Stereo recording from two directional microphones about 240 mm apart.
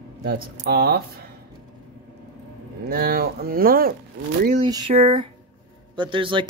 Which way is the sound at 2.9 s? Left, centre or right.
Right.